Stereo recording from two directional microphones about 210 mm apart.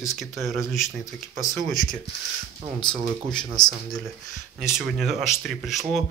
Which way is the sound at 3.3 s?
5° left (ahead or behind).